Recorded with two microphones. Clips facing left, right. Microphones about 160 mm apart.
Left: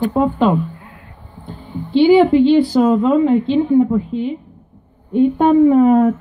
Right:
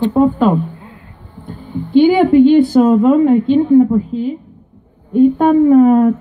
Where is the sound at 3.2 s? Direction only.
50° right (ahead or behind).